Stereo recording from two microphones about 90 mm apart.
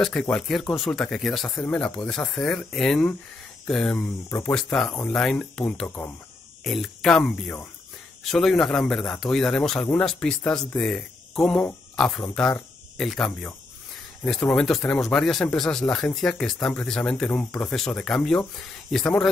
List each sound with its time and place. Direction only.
0.0 s speech: 10° left (ahead or behind)
6.6 s speech: centre (ahead or behind)